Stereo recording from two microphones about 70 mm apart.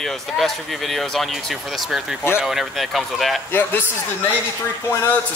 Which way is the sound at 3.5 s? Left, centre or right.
Left.